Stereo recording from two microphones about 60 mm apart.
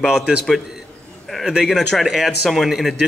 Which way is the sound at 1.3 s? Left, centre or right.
Centre.